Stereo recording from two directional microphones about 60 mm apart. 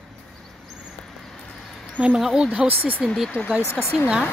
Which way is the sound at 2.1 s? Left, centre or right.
Centre.